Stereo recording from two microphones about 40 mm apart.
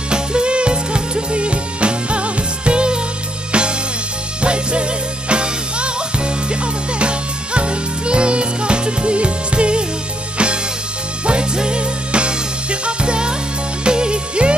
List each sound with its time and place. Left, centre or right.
0.1 s music: right